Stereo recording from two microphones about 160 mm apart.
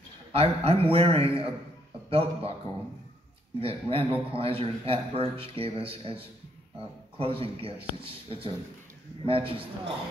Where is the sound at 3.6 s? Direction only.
35° right (ahead or behind).